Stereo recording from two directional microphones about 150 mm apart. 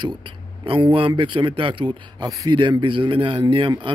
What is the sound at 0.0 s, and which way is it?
A man's voice, 30° right (ahead or behind).